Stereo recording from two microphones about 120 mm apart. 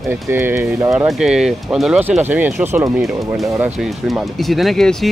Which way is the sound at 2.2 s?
15° right (ahead or behind).